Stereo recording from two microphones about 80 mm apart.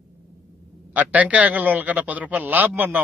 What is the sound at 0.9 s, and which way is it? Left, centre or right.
A man's voice, centre.